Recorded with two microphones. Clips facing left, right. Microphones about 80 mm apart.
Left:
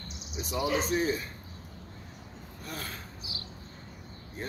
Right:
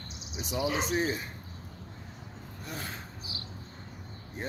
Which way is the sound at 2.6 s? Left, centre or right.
Centre.